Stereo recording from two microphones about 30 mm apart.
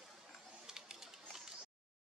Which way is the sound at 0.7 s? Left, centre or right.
Centre.